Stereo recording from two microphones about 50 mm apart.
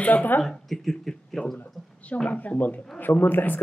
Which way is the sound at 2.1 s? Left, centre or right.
Left.